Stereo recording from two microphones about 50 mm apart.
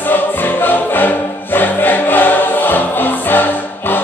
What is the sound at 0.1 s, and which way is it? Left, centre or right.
Music, left.